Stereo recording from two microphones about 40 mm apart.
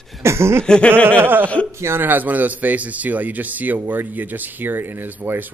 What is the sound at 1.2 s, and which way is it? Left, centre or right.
Speech, right.